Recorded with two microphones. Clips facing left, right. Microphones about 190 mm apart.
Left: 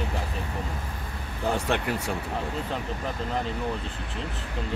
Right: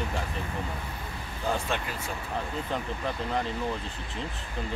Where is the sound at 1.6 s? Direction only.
65° left (ahead or behind).